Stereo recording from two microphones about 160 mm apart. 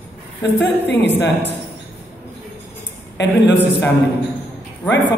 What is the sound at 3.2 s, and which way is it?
A man's voice, 90° left.